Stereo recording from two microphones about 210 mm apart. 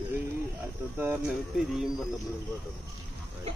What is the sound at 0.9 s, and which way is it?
Speech, 10° right (ahead or behind).